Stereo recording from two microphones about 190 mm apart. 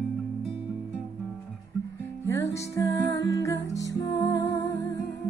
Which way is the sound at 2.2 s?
15° left (ahead or behind).